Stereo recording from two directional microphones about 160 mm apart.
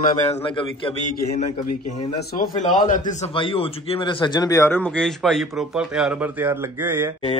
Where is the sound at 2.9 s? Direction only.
50° left (ahead or behind).